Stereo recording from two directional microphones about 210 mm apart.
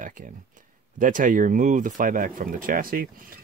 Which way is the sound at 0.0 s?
40° right (ahead or behind).